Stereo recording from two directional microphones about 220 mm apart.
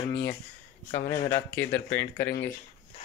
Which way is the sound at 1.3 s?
10° left (ahead or behind).